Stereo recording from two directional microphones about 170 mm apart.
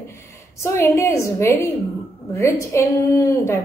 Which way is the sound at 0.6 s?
15° left (ahead or behind).